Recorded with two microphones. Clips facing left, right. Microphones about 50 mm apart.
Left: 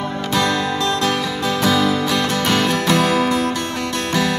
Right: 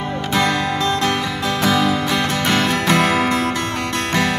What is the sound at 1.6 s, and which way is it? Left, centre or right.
Music, centre.